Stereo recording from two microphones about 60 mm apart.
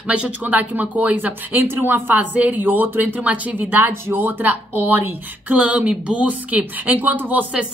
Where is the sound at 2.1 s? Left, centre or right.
Right.